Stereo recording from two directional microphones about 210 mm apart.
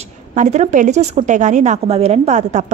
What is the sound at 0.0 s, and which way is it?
Speech, 35° right (ahead or behind).